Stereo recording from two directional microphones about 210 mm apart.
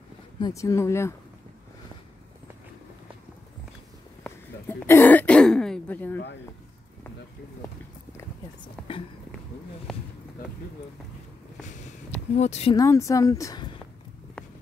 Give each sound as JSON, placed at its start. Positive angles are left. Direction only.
{"t": 0.4, "sound": "speech", "side_deg": 15}
{"t": 4.2, "sound": "throat clearing", "side_deg": 10}
{"t": 8.8, "sound": "speech", "side_deg": 5}
{"t": 11.6, "sound": "speech", "side_deg": 30}
{"t": 12.7, "sound": "speech", "side_deg": 15}